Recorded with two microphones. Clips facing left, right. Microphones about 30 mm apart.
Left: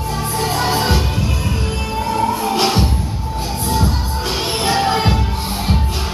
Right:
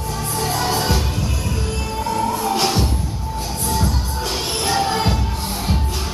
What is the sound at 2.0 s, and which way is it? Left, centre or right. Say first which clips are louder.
Music: left 3 dB; centre.